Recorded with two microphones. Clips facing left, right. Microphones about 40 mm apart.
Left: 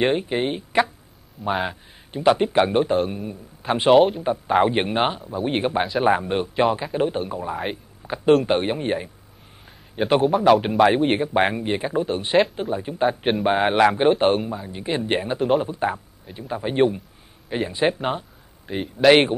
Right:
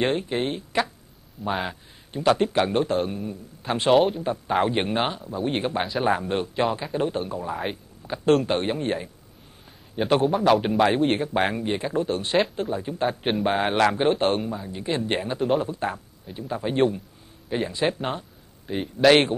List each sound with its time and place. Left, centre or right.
0.0 s a man's voice: centre
1.5 s a man's voice: centre
3.9 s a man's voice: centre
5.8 s speech: centre
6.0 s a man's voice: centre
10.2 s a man's voice: centre; by 18.0 s left
18.7 s speech: centre